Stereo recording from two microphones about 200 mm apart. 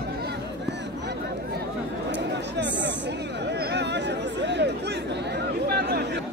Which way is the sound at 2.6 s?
60° right (ahead or behind).